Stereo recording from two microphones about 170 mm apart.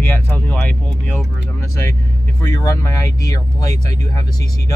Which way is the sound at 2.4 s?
20° left (ahead or behind).